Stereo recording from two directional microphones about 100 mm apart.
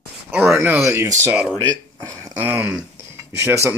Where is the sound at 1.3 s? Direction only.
10° right (ahead or behind).